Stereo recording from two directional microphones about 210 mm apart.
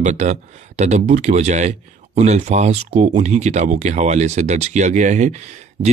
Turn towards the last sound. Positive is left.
turn(degrees=-35)  # may be behind; listen again after turning